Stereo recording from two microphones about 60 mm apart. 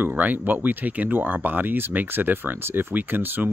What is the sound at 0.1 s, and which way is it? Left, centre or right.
Speech, right.